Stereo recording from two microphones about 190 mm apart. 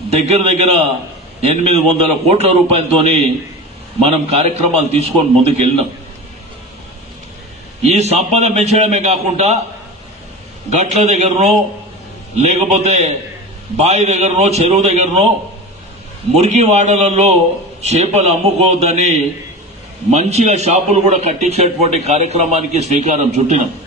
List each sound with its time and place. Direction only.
0.1 s a man's voice: 35° right (ahead or behind)
4.0 s a man's voice: 35° right (ahead or behind)
7.9 s a man's voice: 35° right (ahead or behind)
10.7 s a man's voice: 35° right (ahead or behind)
16.3 s a man's voice: 35° right (ahead or behind)